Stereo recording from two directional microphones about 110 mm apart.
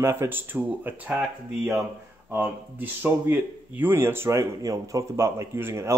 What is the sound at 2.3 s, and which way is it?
Speech, 20° right (ahead or behind).